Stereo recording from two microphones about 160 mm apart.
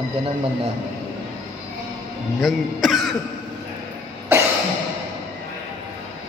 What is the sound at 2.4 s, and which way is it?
Speech, centre (ahead or behind).